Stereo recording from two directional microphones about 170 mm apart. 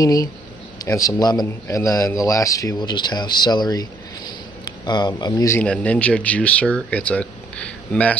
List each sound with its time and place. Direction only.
0.0 s a man's voice: 20° left (ahead or behind)